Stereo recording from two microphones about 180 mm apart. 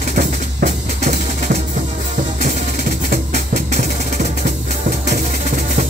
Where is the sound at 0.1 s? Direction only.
45° right (ahead or behind).